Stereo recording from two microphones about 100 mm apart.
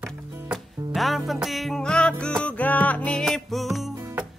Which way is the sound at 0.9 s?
Centre (ahead or behind).